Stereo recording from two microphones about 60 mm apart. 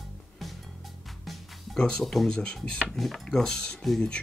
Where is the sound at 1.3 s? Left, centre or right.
Centre.